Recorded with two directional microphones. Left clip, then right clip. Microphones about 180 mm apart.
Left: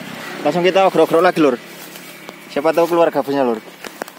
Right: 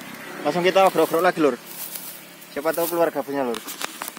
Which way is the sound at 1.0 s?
45° left (ahead or behind).